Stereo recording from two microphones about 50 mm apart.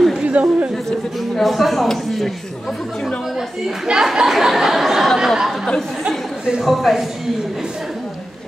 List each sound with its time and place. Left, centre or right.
0.2 s chatter: right
0.8 s speech: centre
3.8 s speech: centre
6.6 s speech: centre